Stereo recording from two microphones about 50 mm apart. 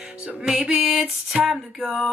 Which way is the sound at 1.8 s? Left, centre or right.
Centre.